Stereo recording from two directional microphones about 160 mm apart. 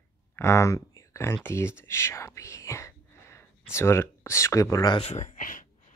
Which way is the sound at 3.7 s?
15° left (ahead or behind).